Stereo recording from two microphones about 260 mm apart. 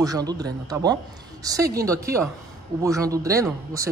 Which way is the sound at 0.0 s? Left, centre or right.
Centre.